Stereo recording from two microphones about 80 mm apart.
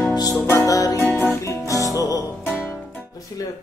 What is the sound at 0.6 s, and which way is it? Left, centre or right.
Music, left.